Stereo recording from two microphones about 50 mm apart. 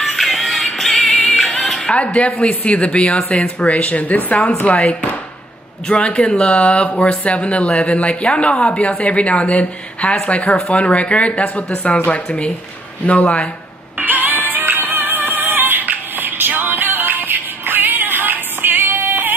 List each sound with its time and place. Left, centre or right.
0.0 s music: centre
2.1 s speech: left
13.9 s music: right